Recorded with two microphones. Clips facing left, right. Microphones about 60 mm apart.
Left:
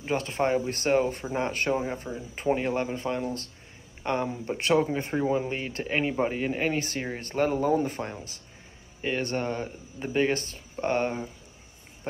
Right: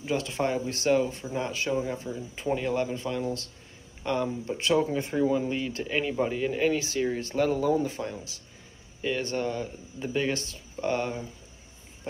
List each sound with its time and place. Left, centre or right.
0.0 s speech: left